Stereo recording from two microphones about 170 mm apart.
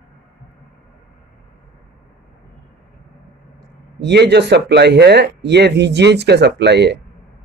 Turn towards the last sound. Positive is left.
turn(degrees=-90)